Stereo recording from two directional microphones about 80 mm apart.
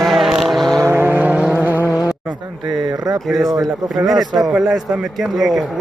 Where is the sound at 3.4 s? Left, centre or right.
Right.